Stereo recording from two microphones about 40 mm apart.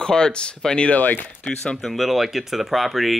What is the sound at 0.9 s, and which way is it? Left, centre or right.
Speech, left.